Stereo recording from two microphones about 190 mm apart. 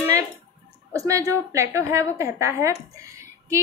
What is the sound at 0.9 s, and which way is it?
A woman's voice, 15° right (ahead or behind).